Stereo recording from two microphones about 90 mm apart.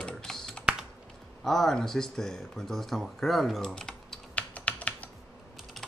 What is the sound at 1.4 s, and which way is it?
Speech, 5° left (ahead or behind).